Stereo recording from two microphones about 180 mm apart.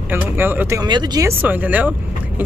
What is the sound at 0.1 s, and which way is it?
Speech, 10° right (ahead or behind).